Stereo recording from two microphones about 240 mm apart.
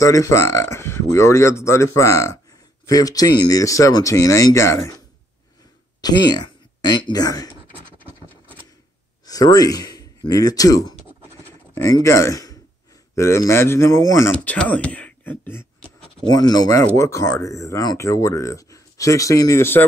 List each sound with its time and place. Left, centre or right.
0.0 s speech: centre
9.2 s speech: centre